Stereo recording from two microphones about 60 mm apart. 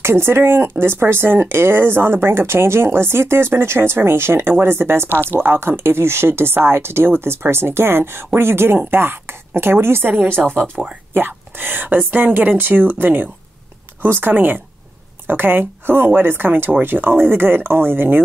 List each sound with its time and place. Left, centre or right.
0.0 s speech: right
5.1 s speech: left
5.4 s speech: right